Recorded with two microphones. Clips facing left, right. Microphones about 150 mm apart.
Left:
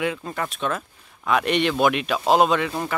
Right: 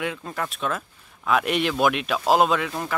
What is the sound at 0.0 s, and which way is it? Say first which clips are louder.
Speech: left 3 dB; centre (ahead or behind).